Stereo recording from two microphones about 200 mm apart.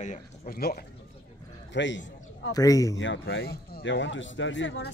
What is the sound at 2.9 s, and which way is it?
Speech, 75° left (ahead or behind).